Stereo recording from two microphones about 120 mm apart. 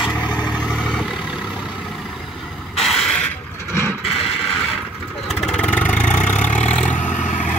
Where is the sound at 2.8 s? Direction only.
5° left (ahead or behind).